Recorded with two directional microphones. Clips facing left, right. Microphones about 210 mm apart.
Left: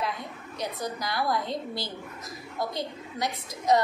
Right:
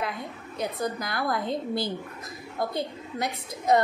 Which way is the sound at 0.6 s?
55° right (ahead or behind).